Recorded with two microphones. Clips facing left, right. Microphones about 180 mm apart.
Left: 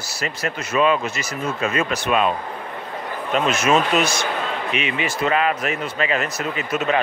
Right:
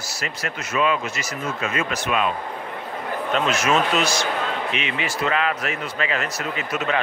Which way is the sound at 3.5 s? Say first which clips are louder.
Left 3 dB; 20° left (ahead or behind).